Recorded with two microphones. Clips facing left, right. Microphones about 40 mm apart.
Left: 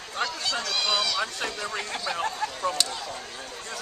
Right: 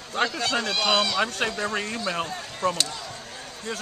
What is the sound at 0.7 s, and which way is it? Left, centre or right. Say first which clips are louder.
Speech: right 2 dB; right.